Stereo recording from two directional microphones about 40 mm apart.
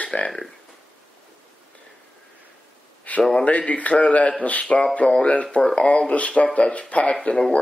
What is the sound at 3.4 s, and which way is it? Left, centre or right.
Speech, left.